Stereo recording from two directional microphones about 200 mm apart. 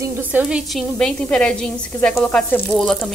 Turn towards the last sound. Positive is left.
turn(degrees=5)  # may be behind; listen again after turning